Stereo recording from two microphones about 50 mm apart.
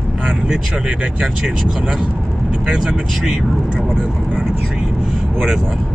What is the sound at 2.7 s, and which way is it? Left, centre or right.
Speech, centre.